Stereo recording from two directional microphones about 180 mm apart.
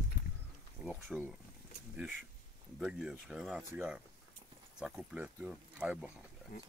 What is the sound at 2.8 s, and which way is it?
Speech, 5° right (ahead or behind).